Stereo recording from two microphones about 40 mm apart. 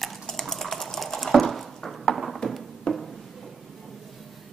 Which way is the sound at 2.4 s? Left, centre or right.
Left.